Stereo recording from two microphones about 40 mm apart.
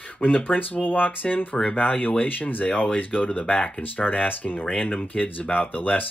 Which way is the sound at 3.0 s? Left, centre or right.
Left.